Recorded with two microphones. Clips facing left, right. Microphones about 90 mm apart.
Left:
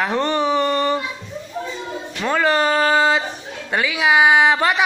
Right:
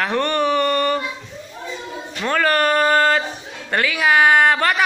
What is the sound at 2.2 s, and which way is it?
Speech, 10° left (ahead or behind).